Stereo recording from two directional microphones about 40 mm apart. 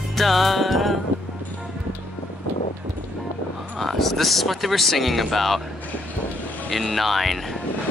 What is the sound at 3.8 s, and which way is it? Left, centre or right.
Speech, centre.